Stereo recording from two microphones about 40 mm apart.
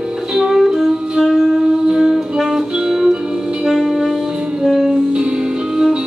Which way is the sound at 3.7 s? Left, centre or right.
Centre.